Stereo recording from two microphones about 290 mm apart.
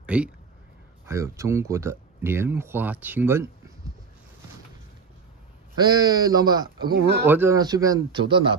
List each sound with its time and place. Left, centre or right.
0.0 s speech: centre
5.8 s speech: centre
6.9 s speech: right
7.2 s speech: centre